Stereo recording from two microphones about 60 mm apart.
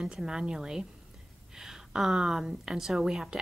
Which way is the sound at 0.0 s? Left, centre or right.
Centre.